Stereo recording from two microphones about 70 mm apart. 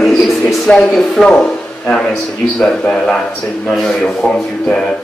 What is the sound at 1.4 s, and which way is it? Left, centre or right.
A man's voice, centre.